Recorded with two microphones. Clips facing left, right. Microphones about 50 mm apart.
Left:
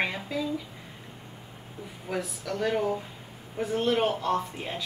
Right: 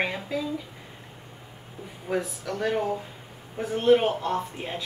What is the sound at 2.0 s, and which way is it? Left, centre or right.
A woman's voice, centre.